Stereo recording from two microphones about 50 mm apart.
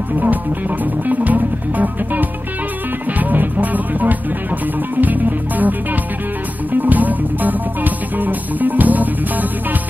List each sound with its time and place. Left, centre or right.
0.2 s music: right